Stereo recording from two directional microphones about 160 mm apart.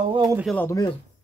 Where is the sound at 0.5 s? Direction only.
15° left (ahead or behind).